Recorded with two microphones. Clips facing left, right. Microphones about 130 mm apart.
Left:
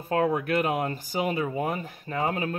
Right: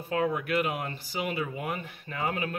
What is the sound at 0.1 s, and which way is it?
Speech, 45° left (ahead or behind).